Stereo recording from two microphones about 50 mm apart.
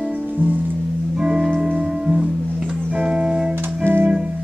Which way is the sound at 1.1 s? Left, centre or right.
Centre.